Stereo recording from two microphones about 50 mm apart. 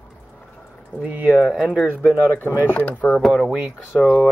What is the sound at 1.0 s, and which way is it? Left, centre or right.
Speech, right.